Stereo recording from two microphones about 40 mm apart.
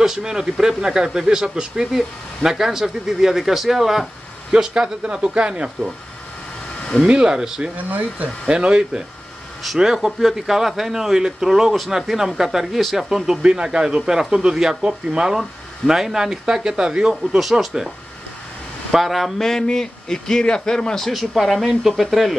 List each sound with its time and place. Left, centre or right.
0.0 s speech: centre
4.6 s speech: centre
7.1 s speech: centre
13.4 s speech: right
17.4 s speech: centre
18.9 s speech: centre
19.7 s speech: centre
21.4 s speech: centre